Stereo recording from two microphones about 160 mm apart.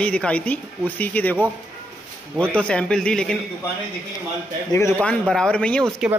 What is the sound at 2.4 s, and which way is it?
Speech, 5° left (ahead or behind).